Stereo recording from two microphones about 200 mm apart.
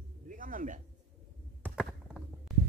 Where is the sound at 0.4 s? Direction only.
45° right (ahead or behind).